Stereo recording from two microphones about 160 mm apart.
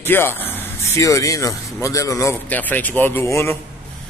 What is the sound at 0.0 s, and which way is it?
A man's voice, 15° left (ahead or behind).